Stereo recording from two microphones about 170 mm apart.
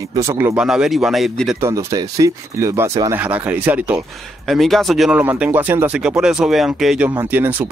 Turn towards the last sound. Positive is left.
turn(degrees=-10)  # may be behind; listen again after turning